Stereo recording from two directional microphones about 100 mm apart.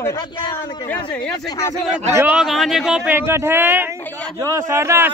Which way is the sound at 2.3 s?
5° right (ahead or behind).